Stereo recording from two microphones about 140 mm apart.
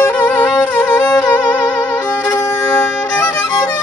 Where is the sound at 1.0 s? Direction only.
25° left (ahead or behind).